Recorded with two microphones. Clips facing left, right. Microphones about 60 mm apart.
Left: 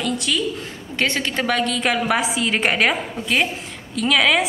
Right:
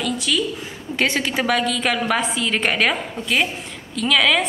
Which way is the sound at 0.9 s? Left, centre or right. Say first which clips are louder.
Right 1 dB; centre.